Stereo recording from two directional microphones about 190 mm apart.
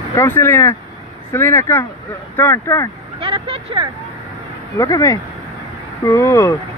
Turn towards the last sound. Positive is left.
turn(degrees=15)  # may be behind; listen again after turning